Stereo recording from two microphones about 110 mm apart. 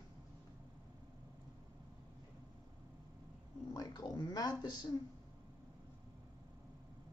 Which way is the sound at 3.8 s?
35° left (ahead or behind).